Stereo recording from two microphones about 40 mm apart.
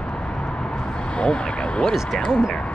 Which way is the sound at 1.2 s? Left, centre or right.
Left.